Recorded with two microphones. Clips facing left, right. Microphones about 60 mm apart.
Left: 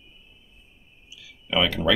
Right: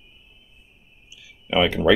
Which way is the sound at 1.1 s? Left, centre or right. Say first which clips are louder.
Right 3 dB; centre.